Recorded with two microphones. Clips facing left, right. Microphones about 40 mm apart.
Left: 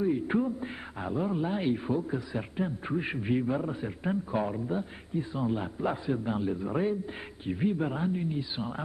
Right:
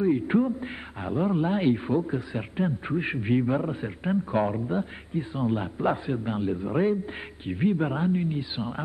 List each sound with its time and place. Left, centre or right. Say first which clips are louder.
0.0 s a man's voice: right 4 dB; right